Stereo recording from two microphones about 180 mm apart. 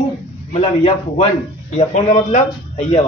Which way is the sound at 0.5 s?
35° left (ahead or behind).